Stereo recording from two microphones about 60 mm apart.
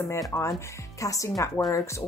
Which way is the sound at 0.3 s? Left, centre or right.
Left.